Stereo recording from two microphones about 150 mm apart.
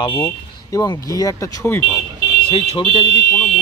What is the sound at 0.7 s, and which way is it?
Speech, 25° left (ahead or behind).